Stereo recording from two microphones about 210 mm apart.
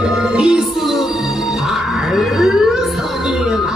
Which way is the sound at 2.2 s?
Centre (ahead or behind).